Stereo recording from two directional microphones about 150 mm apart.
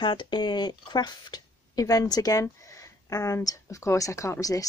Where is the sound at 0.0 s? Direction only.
30° left (ahead or behind).